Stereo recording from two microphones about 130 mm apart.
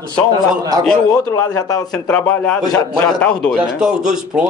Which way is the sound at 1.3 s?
25° left (ahead or behind).